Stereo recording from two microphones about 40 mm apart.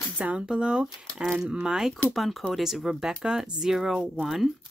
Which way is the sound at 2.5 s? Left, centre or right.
Centre.